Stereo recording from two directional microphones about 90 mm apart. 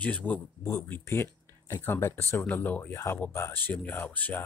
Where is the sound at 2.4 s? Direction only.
20° left (ahead or behind).